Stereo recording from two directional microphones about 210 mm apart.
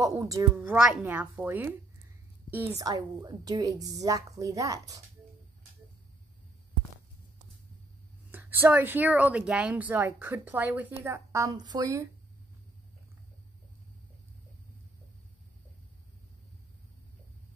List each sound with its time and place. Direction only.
0.0 s speech: 15° right (ahead or behind)
2.8 s speech: 20° right (ahead or behind)
8.3 s speech: 10° right (ahead or behind)